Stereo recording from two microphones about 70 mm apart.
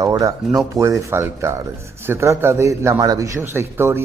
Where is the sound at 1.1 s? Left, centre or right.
Right.